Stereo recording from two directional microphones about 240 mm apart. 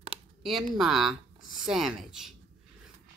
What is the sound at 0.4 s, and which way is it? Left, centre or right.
Speech, centre.